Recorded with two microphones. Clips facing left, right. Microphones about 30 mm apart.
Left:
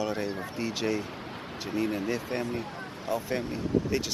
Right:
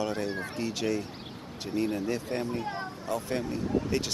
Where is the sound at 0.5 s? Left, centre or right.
Centre.